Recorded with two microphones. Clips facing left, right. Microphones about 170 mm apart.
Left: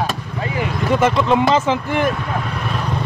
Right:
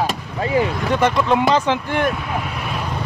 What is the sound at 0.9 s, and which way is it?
Speech, centre (ahead or behind).